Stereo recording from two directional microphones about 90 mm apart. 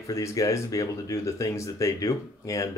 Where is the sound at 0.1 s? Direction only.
35° left (ahead or behind).